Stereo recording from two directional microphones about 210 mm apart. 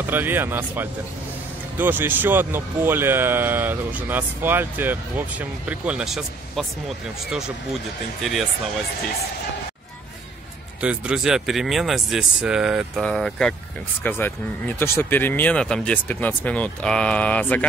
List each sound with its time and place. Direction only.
0.0 s speech: 10° right (ahead or behind)
10.8 s speech: 5° right (ahead or behind)